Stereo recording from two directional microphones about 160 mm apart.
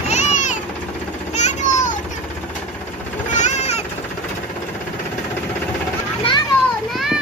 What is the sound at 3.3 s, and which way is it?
Vehicle, 45° left (ahead or behind).